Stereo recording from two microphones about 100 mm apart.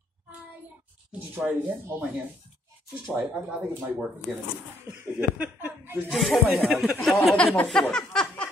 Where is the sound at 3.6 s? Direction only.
15° right (ahead or behind).